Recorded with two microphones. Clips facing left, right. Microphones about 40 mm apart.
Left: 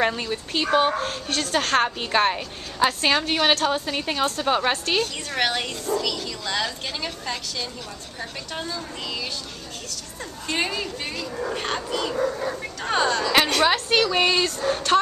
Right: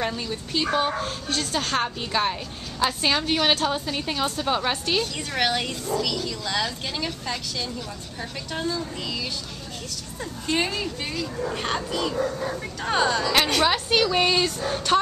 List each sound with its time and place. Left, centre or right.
0.0 s speech: left
3.0 s a woman's voice: centre
10.4 s speech: centre